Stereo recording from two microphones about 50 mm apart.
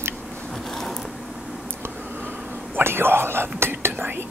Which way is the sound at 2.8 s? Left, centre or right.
Right.